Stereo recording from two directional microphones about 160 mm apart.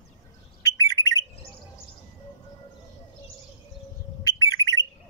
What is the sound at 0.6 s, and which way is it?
Bird, 20° left (ahead or behind).